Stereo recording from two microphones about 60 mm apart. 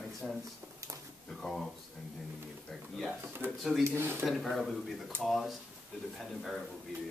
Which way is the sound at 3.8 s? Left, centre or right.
Right.